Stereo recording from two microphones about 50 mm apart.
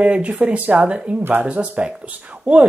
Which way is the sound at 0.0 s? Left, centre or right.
Right.